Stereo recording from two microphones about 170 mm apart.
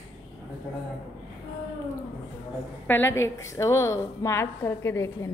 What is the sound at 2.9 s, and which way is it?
A woman's voice, 15° left (ahead or behind).